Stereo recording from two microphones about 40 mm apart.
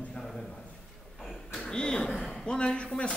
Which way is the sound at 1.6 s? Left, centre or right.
Centre.